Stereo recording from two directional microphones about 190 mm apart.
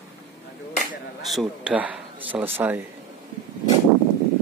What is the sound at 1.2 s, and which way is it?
Speech, 5° right (ahead or behind).